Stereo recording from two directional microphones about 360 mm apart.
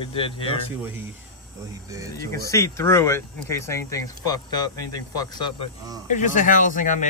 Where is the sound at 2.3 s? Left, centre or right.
Centre.